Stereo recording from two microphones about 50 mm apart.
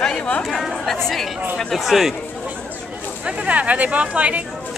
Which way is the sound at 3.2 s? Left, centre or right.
Right.